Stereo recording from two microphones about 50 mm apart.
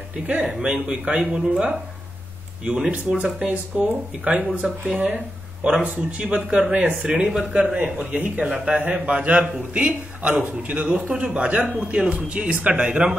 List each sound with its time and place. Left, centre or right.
0.4 s speech: centre
7.2 s speech: centre